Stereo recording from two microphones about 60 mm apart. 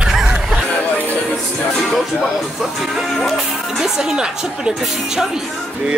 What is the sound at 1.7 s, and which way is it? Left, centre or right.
Speech, centre.